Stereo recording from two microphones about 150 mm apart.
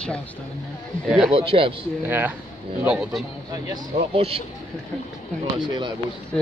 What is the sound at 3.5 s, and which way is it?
Speech, 25° right (ahead or behind).